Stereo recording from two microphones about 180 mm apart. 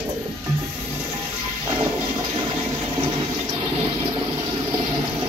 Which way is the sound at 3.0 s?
25° right (ahead or behind).